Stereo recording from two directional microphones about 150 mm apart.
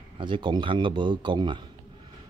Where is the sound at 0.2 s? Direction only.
30° right (ahead or behind).